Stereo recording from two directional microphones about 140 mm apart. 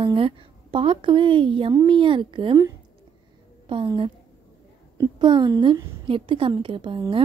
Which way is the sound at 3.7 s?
35° right (ahead or behind).